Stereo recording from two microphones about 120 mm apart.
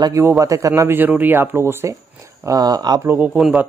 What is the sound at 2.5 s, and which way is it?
Speech, 30° right (ahead or behind).